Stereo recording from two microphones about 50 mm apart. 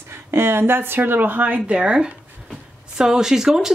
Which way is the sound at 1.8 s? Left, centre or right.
Right.